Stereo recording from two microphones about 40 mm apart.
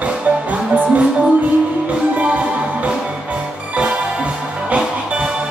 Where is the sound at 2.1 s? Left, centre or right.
Right.